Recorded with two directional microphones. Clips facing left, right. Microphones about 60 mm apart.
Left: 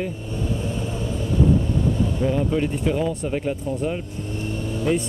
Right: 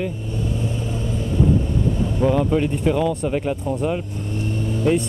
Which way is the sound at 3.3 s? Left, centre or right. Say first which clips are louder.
Right 2 dB; right.